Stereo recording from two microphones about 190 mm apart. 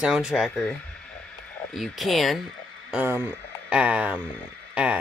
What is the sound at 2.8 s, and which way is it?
Speech, 10° right (ahead or behind).